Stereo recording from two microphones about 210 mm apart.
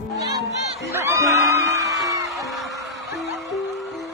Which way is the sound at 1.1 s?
Centre (ahead or behind).